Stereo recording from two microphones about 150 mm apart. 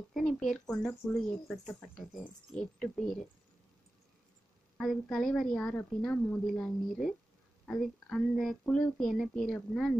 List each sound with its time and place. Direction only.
0.1 s a woman's voice: centre (ahead or behind)
4.7 s a woman's voice: centre (ahead or behind)